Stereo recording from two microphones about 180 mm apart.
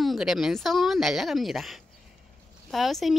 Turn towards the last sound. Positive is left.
turn(degrees=0)  # may be behind; listen again after turning